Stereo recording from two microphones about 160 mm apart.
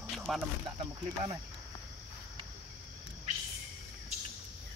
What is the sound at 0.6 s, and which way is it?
Speech, 30° right (ahead or behind).